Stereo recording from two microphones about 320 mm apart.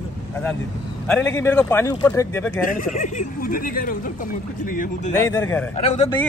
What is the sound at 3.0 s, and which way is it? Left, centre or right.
Speech, left.